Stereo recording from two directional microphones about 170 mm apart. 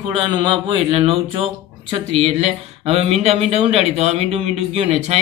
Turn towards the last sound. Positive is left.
turn(degrees=-40)  # may be behind; listen again after turning